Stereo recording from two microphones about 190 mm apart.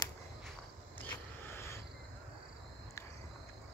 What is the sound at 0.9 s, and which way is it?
Vehicle, 10° left (ahead or behind).